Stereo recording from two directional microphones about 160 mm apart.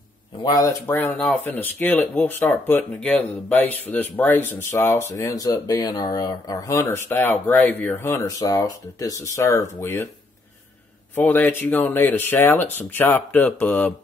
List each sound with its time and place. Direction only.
0.4 s speech: 25° left (ahead or behind)
0.8 s speech: 10° left (ahead or behind)
11.1 s speech: 10° left (ahead or behind)